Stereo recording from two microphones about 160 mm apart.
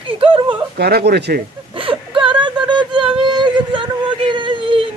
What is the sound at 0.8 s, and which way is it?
Speech, 85° right.